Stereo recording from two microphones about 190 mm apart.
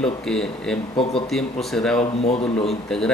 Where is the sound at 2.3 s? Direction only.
35° left (ahead or behind).